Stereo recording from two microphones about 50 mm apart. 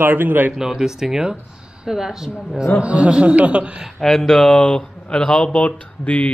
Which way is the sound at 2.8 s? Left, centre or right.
Right.